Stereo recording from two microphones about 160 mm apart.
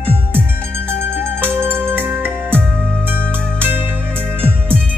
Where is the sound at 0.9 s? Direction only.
15° right (ahead or behind).